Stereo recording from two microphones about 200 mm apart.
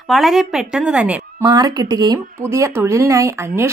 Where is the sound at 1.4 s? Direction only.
20° right (ahead or behind).